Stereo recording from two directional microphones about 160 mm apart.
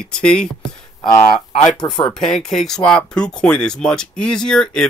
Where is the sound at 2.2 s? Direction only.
5° left (ahead or behind).